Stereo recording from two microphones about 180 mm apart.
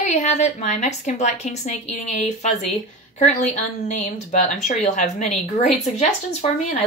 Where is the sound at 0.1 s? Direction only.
40° left (ahead or behind).